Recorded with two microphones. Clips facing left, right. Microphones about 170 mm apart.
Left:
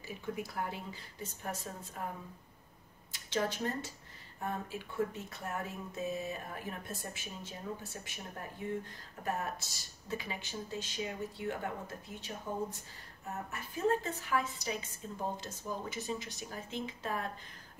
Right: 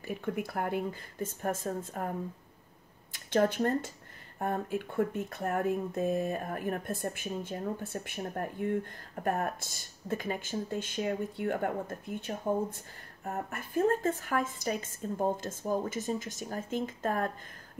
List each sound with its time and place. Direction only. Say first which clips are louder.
0.0 s speech: right 6 dB; 55° right (ahead or behind)
3.1 s speech: right 8 dB; 55° right (ahead or behind)